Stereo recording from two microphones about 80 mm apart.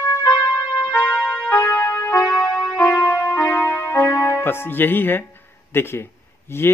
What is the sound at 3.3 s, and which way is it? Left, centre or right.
Music, left.